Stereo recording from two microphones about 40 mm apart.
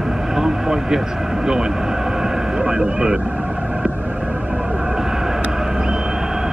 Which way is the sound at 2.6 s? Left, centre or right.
Right.